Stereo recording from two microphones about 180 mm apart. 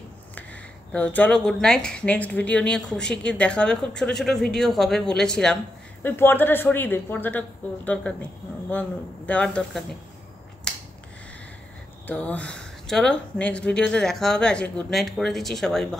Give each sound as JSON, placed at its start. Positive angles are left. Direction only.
{"t": 0.3, "sound": "speech", "side_deg": 10}
{"t": 12.1, "sound": "speech", "side_deg": 10}